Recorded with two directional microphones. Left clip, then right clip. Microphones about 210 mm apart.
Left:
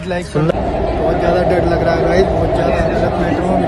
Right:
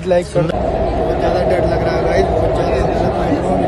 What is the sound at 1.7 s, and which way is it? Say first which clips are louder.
Vehicle: left 2 dB; 10° left (ahead or behind).